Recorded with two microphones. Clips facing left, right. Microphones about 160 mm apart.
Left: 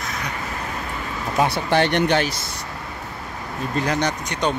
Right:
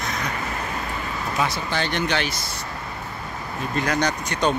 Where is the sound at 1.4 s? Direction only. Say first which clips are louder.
Left 7 dB; 60° left (ahead or behind).